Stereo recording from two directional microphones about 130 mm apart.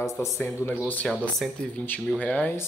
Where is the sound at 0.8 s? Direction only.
10° left (ahead or behind).